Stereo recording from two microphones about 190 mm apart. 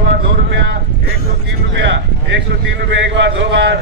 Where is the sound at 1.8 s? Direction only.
70° right (ahead or behind).